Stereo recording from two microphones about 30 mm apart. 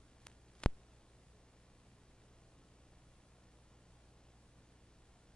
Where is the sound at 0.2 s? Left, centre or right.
Left.